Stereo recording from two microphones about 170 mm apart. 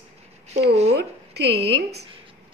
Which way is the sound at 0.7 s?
40° right (ahead or behind).